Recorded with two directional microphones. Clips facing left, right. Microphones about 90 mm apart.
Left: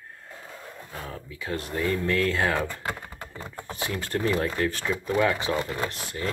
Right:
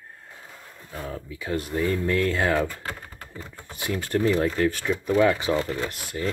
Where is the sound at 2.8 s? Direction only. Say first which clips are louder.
Left 2 dB; 20° left (ahead or behind).